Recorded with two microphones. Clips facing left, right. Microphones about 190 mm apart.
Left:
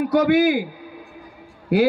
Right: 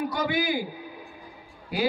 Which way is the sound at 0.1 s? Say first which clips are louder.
Left 11 dB; 70° left (ahead or behind).